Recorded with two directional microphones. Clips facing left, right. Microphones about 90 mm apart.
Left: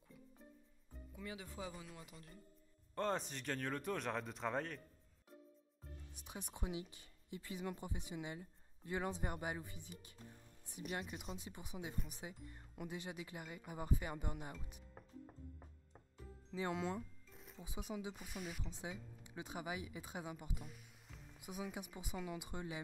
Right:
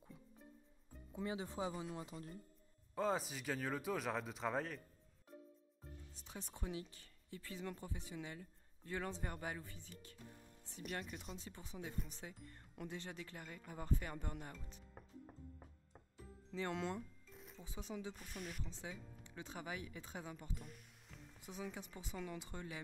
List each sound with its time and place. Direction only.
1.1 s speech: 25° right (ahead or behind)
2.9 s speech: 5° right (ahead or behind)
6.1 s speech: 15° left (ahead or behind)
10.8 s speech: 5° left (ahead or behind)
15.0 s music: centre (ahead or behind)
16.5 s a sound: 5° left (ahead or behind)
17.6 s speech: 10° left (ahead or behind)
18.6 s speech: 15° left (ahead or behind)
20.6 s music: centre (ahead or behind)
21.4 s speech: 10° left (ahead or behind)